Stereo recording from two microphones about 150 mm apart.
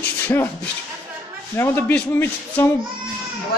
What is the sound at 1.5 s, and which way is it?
Speech, 15° left (ahead or behind).